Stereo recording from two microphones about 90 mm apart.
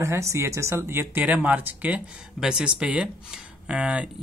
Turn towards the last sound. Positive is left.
turn(degrees=-10)  # may be behind; listen again after turning